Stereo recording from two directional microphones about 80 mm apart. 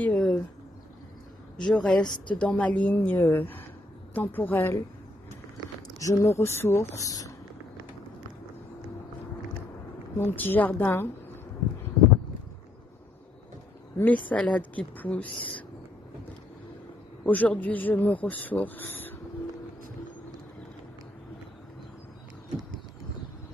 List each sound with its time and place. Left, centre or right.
0.0 s a sound: centre
1.6 s speech: centre; by 4.8 s left
5.9 s speech: left
7.0 s speech: left
10.1 s speech: left
13.9 s speech: left
17.2 s speech: centre